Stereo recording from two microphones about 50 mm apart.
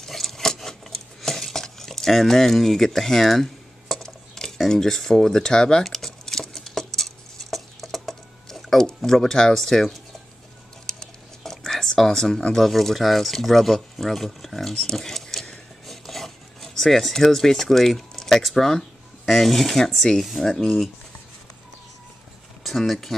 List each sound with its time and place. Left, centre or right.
0.0 s a sound: centre
8.8 s speech: centre
10.9 s a sound: centre
12.5 s speech: centre
15.9 s rub: centre
20.2 s speech: centre
22.6 s speech: centre